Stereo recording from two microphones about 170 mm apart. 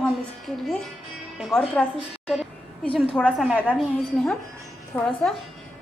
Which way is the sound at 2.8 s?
30° left (ahead or behind).